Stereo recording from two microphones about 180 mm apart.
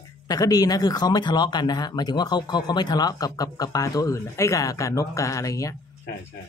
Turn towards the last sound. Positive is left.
turn(degrees=20)  # may be behind; listen again after turning